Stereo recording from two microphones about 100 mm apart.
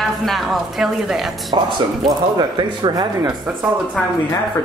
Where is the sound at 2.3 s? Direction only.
45° right (ahead or behind).